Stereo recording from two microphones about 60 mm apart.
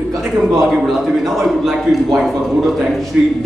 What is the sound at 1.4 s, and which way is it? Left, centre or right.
Speech, centre.